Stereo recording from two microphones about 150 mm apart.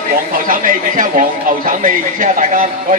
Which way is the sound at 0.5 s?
60° right (ahead or behind).